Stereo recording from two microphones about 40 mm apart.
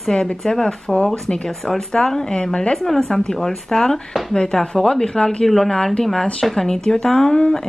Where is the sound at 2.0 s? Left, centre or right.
Centre.